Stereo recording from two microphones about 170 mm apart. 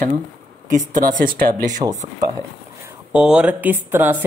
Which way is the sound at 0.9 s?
55° right (ahead or behind).